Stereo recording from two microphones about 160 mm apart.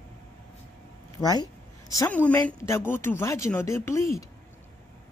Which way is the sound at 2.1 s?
10° left (ahead or behind).